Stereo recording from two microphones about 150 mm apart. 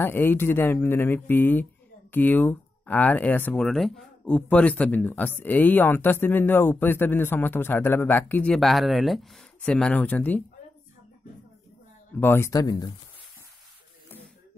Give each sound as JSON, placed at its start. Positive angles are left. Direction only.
{"t": 0.0, "sound": "speech", "side_deg": 15}
{"t": 12.2, "sound": "speech", "side_deg": 15}